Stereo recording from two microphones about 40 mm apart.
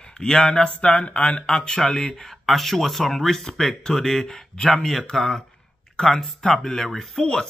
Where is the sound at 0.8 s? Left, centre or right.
Left.